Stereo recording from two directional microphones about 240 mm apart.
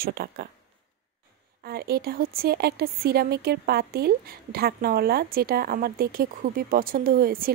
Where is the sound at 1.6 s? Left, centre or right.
Right.